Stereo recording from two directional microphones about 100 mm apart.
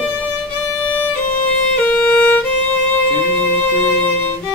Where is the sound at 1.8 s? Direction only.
15° left (ahead or behind).